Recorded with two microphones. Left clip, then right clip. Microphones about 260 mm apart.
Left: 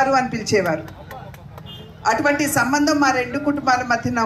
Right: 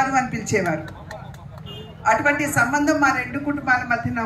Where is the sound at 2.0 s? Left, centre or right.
Centre.